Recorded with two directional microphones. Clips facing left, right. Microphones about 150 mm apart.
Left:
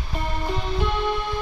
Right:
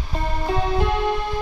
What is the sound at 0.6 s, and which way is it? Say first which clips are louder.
Music: right 4 dB; 40° right (ahead or behind).